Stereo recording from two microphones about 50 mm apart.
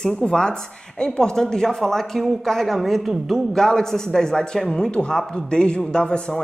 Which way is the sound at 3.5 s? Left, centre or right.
Centre.